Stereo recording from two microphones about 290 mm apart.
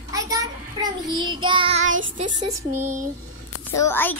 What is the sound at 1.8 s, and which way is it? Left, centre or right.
Child singing, right.